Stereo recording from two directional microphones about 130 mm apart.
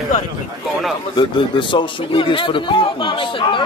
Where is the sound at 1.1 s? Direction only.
40° left (ahead or behind).